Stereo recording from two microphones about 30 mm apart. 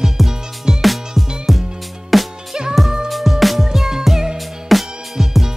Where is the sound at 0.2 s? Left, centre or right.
Centre.